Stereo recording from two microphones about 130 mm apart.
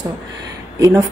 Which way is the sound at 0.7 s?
25° right (ahead or behind).